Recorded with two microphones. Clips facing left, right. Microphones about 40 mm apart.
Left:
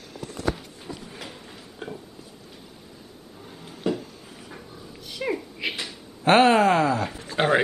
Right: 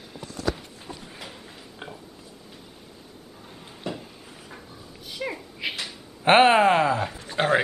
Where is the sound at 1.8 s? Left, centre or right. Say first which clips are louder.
Left 4 dB; centre.